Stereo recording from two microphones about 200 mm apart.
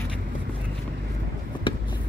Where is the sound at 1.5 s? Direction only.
25° left (ahead or behind).